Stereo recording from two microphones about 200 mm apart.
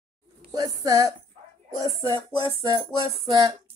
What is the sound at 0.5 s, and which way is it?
Speech, 20° right (ahead or behind).